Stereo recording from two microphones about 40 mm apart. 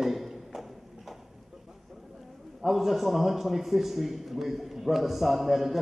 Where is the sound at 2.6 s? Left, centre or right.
Centre.